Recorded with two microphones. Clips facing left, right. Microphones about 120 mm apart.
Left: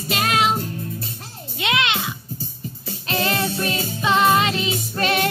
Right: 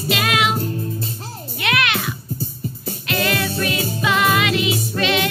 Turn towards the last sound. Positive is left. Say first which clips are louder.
# right 1 dB
turn(degrees=40)  # may be behind; listen again after turning